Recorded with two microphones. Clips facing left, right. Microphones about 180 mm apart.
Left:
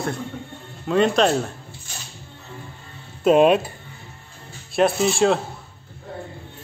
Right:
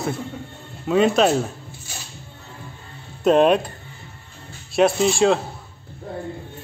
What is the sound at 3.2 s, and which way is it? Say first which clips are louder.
Speech: left 1 dB; 5° left (ahead or behind).